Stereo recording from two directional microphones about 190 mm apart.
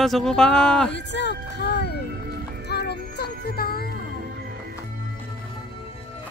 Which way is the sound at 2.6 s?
60° left (ahead or behind).